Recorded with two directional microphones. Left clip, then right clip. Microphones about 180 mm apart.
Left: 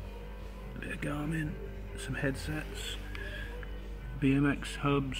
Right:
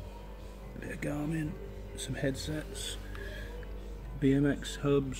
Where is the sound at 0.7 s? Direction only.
30° left (ahead or behind).